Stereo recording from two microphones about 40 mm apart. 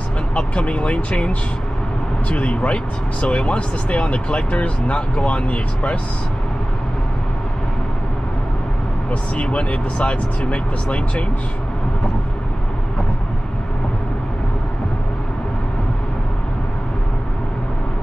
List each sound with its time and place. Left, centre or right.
0.3 s speech: left
9.1 s speech: left